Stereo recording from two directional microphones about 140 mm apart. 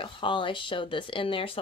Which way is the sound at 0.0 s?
35° left (ahead or behind).